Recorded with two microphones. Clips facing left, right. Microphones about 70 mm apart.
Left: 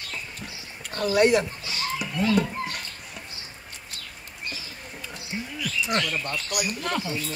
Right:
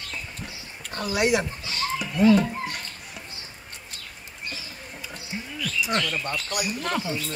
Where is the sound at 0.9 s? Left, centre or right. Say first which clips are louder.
Left 3 dB; centre.